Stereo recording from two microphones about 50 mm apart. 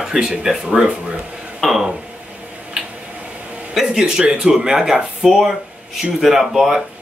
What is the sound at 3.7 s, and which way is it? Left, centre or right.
A man's voice, centre.